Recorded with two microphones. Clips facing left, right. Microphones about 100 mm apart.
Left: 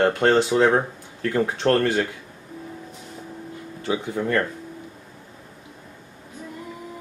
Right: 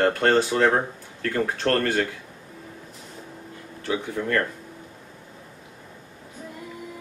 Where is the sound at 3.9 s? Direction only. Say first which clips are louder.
Left 2 dB; 20° left (ahead or behind).